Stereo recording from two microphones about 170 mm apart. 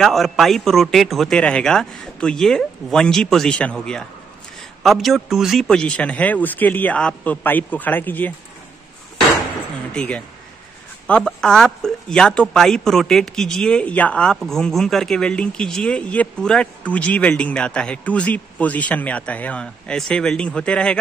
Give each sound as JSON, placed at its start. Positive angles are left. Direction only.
{"t": 0.0, "sound": "a man's voice", "side_deg": 0}
{"t": 9.9, "sound": "speech", "side_deg": 5}